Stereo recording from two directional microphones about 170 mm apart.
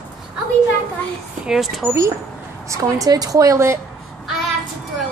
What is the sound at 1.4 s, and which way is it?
Speech, centre (ahead or behind).